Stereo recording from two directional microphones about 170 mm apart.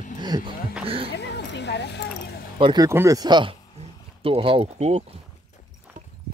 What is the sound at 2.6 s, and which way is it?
Speech, 25° right (ahead or behind).